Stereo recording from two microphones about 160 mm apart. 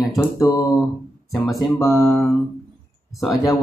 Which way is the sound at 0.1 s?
25° left (ahead or behind).